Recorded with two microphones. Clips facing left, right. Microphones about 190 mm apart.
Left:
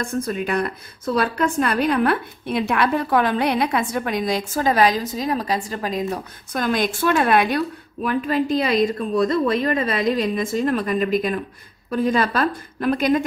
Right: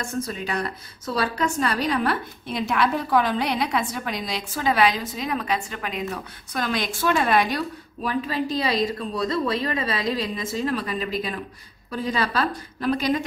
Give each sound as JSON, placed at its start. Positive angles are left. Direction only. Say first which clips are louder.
{"t": 0.0, "sound": "a woman's voice", "louder": "left 5 dB", "side_deg": 55}